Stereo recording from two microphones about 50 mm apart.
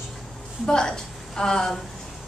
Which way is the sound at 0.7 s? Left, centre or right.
Centre.